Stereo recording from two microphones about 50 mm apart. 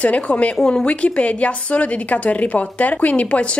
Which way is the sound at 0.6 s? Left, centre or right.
Centre.